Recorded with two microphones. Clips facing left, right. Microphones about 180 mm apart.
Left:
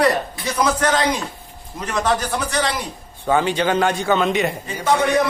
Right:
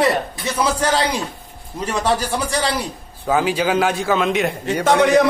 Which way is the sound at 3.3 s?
5° right (ahead or behind).